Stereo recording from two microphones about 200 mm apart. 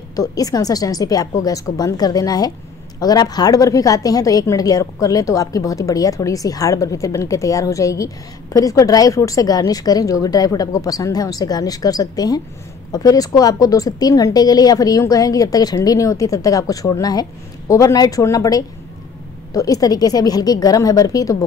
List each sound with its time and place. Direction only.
0.1 s a woman's voice: 15° left (ahead or behind)